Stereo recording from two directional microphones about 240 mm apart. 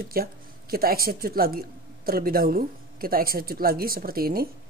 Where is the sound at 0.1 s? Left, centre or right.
Right.